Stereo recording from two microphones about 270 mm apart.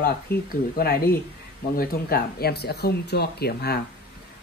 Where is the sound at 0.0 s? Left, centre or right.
Left.